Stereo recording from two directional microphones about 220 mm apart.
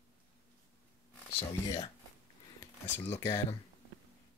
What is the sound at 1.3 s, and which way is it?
Speech, 20° left (ahead or behind).